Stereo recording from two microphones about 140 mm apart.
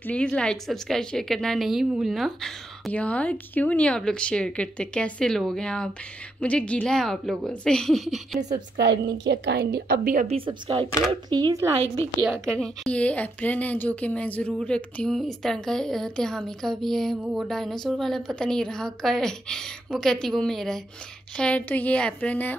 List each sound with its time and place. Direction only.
0.0 s a woman's voice: 10° left (ahead or behind)
8.4 s a woman's voice: 60° right (ahead or behind)
9.8 s a woman's voice: 80° right
10.2 s a woman's voice: 45° right (ahead or behind)
11.1 s speech: 30° right (ahead or behind)
12.4 s a woman's voice: 5° left (ahead or behind)